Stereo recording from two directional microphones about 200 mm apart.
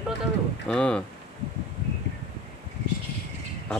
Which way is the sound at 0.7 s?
5° left (ahead or behind).